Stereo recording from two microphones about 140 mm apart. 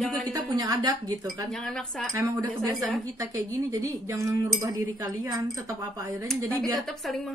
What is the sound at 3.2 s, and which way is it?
A woman's voice, 25° right (ahead or behind).